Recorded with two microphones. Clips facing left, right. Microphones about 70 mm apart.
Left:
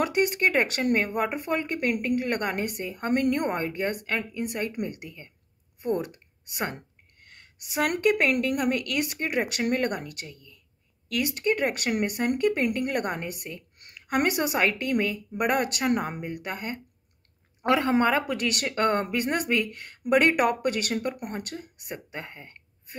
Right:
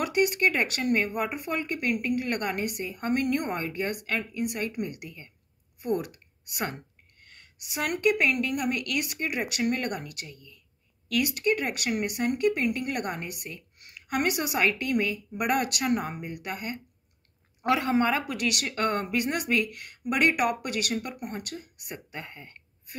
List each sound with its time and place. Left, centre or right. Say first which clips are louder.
0.0 s speech: left 1 dB; left
2.1 s speech: left 2 dB; left
11.1 s speech: even; left